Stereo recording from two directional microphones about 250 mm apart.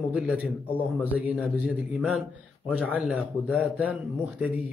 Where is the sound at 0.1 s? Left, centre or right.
Centre.